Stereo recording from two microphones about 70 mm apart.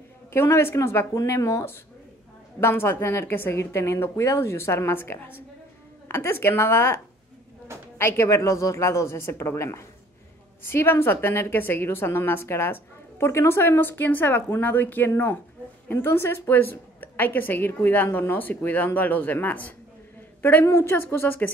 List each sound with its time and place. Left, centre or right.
0.3 s a woman's voice: left
8.0 s a woman's voice: left
20.8 s a woman's voice: left